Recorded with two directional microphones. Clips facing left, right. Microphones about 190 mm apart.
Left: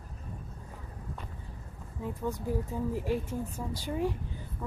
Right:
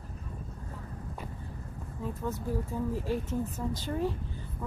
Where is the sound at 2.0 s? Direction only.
15° left (ahead or behind).